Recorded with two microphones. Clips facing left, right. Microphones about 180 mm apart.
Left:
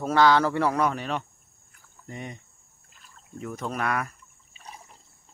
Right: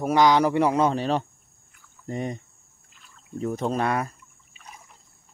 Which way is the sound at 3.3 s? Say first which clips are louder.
Right 6 dB; 30° right (ahead or behind).